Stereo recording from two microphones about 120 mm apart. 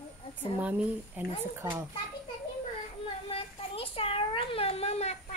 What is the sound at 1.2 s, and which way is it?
Speech, 20° right (ahead or behind).